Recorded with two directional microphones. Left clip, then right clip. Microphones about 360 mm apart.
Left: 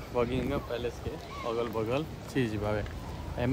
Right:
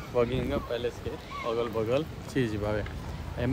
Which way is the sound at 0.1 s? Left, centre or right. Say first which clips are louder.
Right 3 dB; centre.